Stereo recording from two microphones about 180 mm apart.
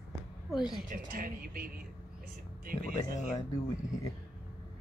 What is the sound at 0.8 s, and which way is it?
Speech, 45° right (ahead or behind).